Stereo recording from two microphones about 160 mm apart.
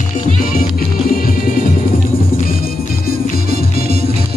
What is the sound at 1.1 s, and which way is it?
Music, 65° left (ahead or behind).